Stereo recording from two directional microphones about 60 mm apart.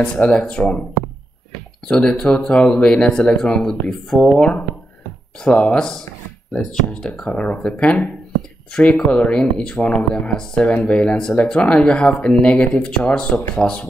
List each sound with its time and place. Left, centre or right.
0.1 s speech: centre
1.9 s speech: centre